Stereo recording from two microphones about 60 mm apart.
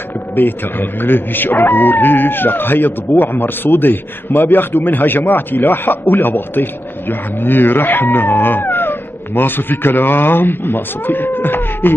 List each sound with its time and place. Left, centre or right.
0.4 s speech: left